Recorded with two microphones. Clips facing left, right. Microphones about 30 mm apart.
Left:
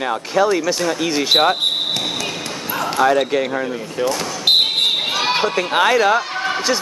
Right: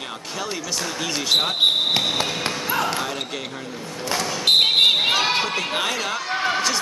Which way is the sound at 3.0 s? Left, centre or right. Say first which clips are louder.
Left 12 dB; centre.